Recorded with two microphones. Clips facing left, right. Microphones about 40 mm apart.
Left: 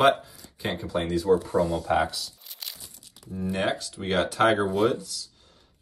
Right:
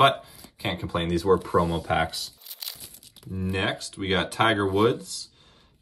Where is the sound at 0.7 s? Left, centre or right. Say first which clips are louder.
Left 1 dB; right.